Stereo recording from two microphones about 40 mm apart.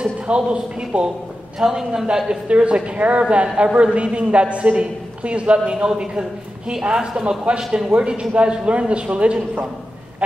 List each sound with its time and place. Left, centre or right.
0.0 s speech: right
1.6 s a man's voice: centre
2.2 s a man's voice: right